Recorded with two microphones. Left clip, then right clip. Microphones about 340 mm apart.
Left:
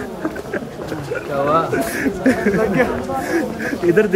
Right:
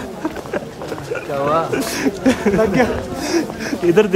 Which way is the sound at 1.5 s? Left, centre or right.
Centre.